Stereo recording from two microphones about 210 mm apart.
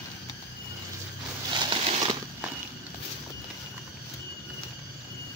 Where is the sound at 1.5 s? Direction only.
25° right (ahead or behind).